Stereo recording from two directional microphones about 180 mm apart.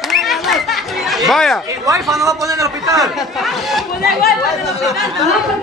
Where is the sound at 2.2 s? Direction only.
20° right (ahead or behind).